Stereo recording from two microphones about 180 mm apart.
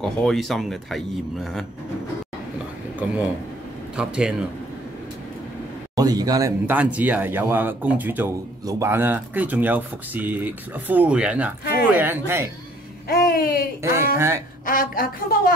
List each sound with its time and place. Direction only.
0.0 s speech: centre (ahead or behind)
3.0 s speech: 10° right (ahead or behind)
5.9 s a man's voice: 20° right (ahead or behind)
6.6 s speech: 10° right (ahead or behind)
13.1 s a sound: 60° left (ahead or behind)
13.8 s speech: 15° right (ahead or behind)
14.7 s a woman's voice: 50° left (ahead or behind)